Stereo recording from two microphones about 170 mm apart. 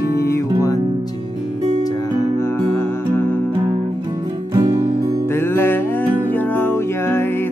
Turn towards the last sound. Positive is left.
turn(degrees=15)  # may be behind; listen again after turning